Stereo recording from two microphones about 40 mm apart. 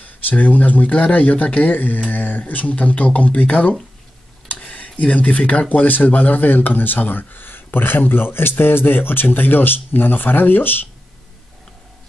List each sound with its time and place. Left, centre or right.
0.0 s speech: left
2.6 s speech: left